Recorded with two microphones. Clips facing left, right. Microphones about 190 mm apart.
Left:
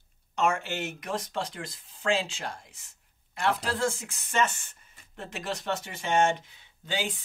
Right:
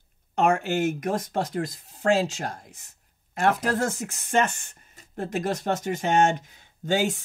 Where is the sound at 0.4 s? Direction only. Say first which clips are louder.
Right 6 dB; 45° right (ahead or behind).